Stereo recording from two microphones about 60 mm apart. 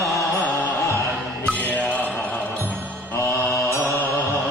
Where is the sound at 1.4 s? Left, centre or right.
Centre.